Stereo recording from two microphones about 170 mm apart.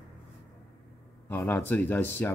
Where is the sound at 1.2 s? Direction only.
10° left (ahead or behind).